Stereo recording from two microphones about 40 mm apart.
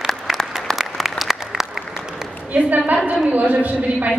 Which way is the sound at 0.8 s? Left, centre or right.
Centre.